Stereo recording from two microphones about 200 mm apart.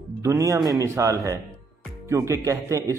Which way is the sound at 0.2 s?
15° right (ahead or behind).